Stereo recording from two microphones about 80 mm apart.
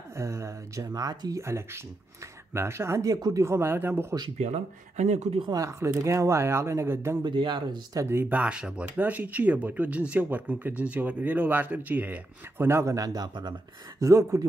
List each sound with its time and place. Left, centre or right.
0.1 s speech: right
1.4 s speech: right
3.1 s a man's voice: right
3.4 s speech: right
5.5 s speech: right
7.2 s speech: right
8.1 s speech: right
8.4 s speech: centre
12.6 s speech: right
12.9 s a man's voice: right
13.3 s speech: right
13.9 s speech: right